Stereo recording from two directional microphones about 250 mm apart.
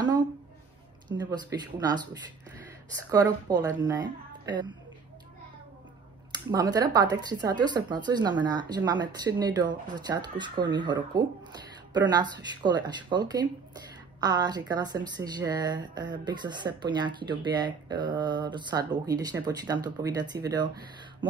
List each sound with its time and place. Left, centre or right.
1.0 s a woman's voice: centre
3.1 s a woman's voice: centre
6.5 s a woman's voice: centre